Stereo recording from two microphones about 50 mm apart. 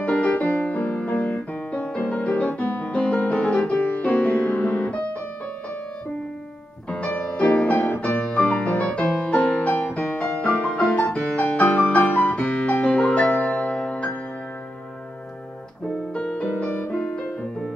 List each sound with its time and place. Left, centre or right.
0.0 s music: left
6.9 s music: left
16.1 s music: left